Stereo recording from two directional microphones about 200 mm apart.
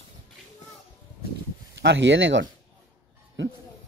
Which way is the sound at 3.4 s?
70° right (ahead or behind).